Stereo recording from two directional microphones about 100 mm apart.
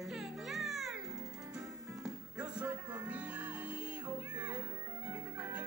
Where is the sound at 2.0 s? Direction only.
10° right (ahead or behind).